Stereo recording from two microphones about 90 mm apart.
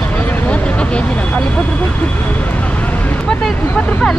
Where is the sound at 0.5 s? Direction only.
15° left (ahead or behind).